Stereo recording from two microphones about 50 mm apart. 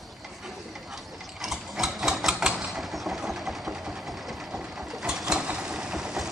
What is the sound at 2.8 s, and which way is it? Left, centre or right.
Vehicle, centre.